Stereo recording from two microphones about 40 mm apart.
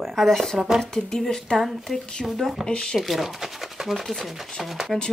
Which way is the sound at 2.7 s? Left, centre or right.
Left.